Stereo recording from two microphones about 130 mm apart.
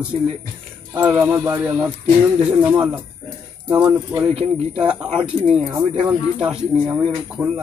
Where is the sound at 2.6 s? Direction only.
10° right (ahead or behind).